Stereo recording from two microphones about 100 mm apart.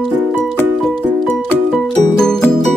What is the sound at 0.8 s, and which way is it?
Music, 5° left (ahead or behind).